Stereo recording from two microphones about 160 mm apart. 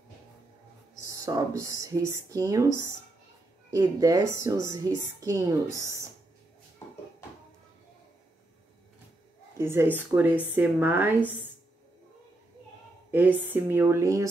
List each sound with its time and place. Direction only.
1.0 s a woman's voice: 20° right (ahead or behind)
3.7 s a woman's voice: 20° right (ahead or behind)
9.6 s a woman's voice: 15° right (ahead or behind)
13.1 s a woman's voice: 10° right (ahead or behind)